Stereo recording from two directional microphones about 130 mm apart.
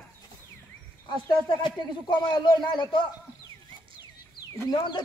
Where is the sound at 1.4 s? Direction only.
35° left (ahead or behind).